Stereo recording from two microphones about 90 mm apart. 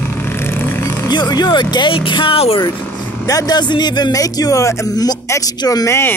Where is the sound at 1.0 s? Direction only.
50° left (ahead or behind); by 2.6 s 90° left.